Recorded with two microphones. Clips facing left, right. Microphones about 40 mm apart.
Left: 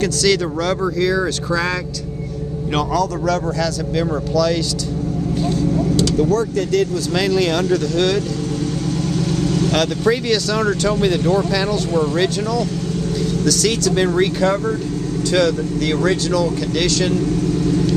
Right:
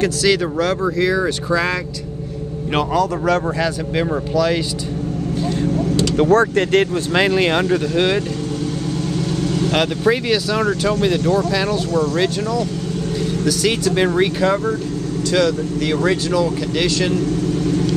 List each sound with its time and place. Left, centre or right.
0.0 s speech: centre
6.1 s speech: right
9.4 s speech: centre
10.7 s speech: centre
11.9 s speech: centre
12.2 s speech: centre